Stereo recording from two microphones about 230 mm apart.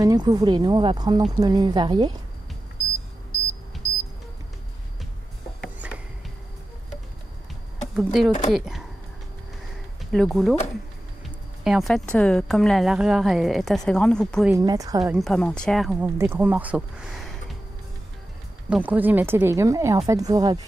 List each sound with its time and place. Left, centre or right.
0.0 s a woman's voice: centre
5.6 s a sound: centre
7.9 s a woman's voice: centre
10.1 s a woman's voice: centre
11.6 s a woman's voice: centre
14.5 s a woman's voice: centre
15.1 s a woman's voice: centre
18.7 s a woman's voice: centre